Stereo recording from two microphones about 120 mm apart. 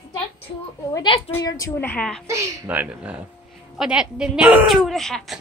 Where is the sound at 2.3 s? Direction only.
25° right (ahead or behind).